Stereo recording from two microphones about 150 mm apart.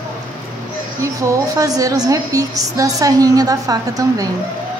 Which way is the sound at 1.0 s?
20° right (ahead or behind).